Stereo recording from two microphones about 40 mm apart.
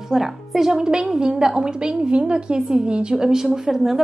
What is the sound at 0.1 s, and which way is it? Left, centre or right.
A woman's voice, centre.